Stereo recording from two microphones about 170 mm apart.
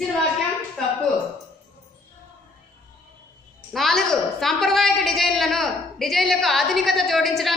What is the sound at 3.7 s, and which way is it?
A woman's voice, centre (ahead or behind).